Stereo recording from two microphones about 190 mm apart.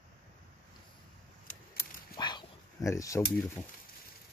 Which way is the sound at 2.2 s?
20° left (ahead or behind).